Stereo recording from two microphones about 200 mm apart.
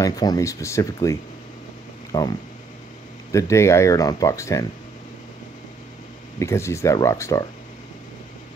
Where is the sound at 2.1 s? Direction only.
15° left (ahead or behind).